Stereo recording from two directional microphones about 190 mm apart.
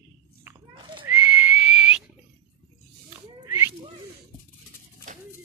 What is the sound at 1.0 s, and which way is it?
Horse, 10° right (ahead or behind).